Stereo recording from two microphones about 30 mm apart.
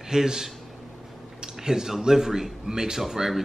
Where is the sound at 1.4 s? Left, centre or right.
Centre.